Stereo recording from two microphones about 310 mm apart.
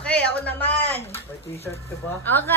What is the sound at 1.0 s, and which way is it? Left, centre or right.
Speech, centre.